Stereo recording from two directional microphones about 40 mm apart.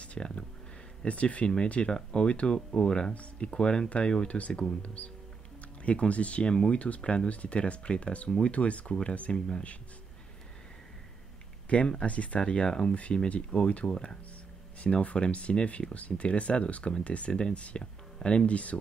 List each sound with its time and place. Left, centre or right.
0.0 s a sound: left
1.0 s speech: left
6.5 s speech: centre
11.7 s speech: left